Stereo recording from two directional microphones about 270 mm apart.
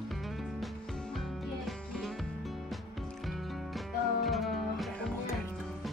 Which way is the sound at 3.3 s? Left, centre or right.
Centre.